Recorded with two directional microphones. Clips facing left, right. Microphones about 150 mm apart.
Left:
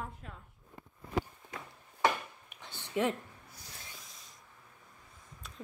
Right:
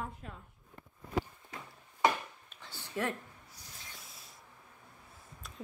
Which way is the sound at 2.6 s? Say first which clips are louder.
Left 4 dB; 20° left (ahead or behind).